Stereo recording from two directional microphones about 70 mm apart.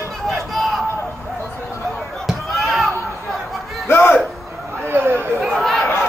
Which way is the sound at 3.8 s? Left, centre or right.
Left.